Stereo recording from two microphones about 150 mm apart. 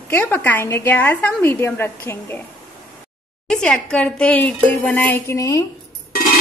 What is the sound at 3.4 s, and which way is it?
Speech, 5° left (ahead or behind).